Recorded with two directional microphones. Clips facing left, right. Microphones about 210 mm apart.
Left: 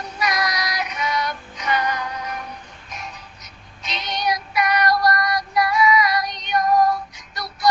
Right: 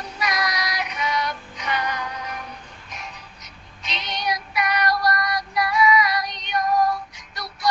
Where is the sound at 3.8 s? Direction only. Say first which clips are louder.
Left 3 dB; 45° left (ahead or behind).